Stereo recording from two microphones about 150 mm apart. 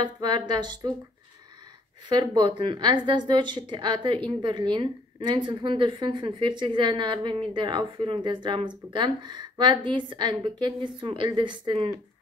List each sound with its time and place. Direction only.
0.0 s speech: 30° right (ahead or behind)
2.0 s a woman's voice: 30° right (ahead or behind)